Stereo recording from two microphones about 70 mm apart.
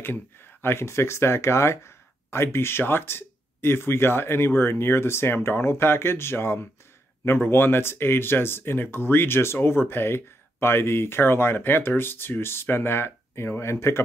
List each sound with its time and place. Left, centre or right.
0.0 s speech: left